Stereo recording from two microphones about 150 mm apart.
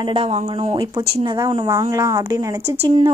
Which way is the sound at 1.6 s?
20° right (ahead or behind).